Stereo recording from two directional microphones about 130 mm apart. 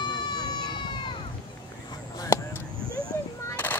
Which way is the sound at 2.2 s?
25° left (ahead or behind).